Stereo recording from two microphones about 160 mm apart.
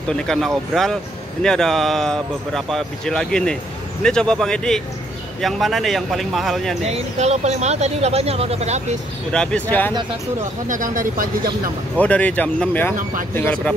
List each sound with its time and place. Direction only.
0.1 s speech: 5° left (ahead or behind)
6.9 s speech: 45° right (ahead or behind)
9.3 s speech: 5° left (ahead or behind)
10.7 s speech: 55° right (ahead or behind)
12.0 s speech: 10° left (ahead or behind)